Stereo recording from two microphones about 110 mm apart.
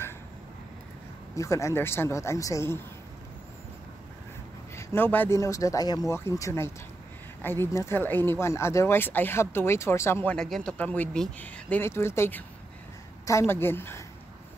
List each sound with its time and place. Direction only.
1.3 s speech: 30° left (ahead or behind)
4.7 s speech: 20° left (ahead or behind)
10.3 s speech: 5° left (ahead or behind); by 14.0 s 20° left (ahead or behind)